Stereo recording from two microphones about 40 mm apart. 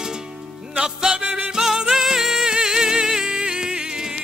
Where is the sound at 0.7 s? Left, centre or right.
Centre.